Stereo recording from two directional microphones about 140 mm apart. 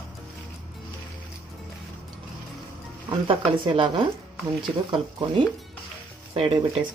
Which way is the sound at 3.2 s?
40° right (ahead or behind).